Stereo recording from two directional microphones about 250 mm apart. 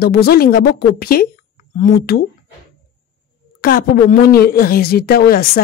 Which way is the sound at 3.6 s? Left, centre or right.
Left.